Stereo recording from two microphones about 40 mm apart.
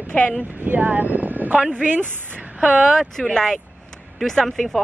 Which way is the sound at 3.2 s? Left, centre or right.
Centre.